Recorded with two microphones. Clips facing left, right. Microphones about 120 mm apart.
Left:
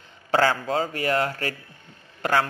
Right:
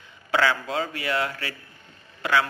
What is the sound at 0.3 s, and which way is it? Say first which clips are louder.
A man's voice: left 2 dB; 40° left (ahead or behind).